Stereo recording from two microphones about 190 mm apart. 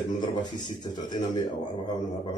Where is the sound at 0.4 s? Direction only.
20° left (ahead or behind).